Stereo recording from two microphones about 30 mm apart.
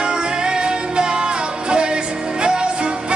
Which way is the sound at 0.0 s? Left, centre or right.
Right.